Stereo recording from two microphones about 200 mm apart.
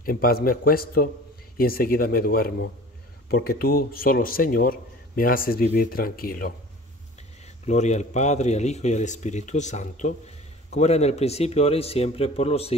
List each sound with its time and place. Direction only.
0.0 s speech: 45° left (ahead or behind)
7.4 s a man's voice: 35° left (ahead or behind)